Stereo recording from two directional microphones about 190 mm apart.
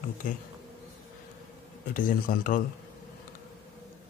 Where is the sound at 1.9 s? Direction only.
45° left (ahead or behind).